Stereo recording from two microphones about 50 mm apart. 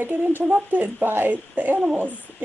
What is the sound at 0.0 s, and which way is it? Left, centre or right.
Speech, right.